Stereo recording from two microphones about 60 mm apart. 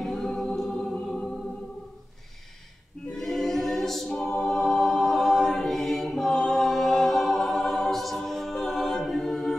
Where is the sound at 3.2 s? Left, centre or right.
Centre.